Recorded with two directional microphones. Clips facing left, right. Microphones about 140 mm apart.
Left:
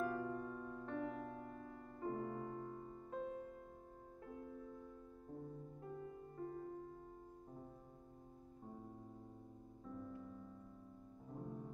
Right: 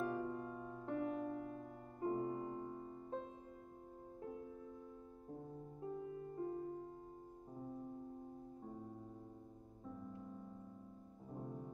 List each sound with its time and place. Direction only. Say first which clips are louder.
0.0 s music: even; 20° right (ahead or behind)
2.0 s music: right 4 dB; 20° right (ahead or behind)
5.8 s music: right 7 dB; 20° right (ahead or behind)
9.8 s music: left 1 dB; 15° right (ahead or behind)